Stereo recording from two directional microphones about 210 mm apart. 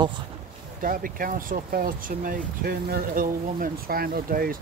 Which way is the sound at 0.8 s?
40° right (ahead or behind).